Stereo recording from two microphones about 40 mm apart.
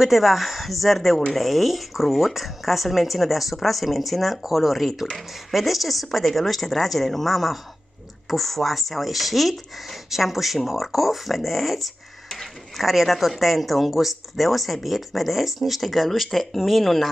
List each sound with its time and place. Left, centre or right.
0.0 s speech: centre